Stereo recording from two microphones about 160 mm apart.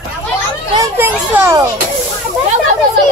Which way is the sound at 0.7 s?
20° right (ahead or behind).